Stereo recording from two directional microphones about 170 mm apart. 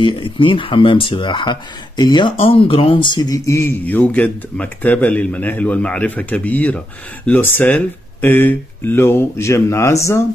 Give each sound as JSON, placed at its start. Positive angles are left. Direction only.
{"t": 0.0, "sound": "speech", "side_deg": 30}